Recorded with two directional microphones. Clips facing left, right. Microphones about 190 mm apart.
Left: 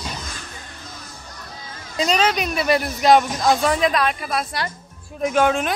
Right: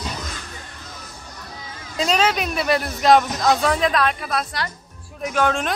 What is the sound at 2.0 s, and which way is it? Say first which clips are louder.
Speech: even; 5° right (ahead or behind).